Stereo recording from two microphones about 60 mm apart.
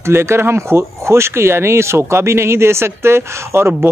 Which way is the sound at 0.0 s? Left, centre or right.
Right.